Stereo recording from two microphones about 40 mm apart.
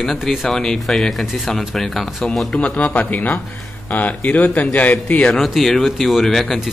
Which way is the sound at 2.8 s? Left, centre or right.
Left.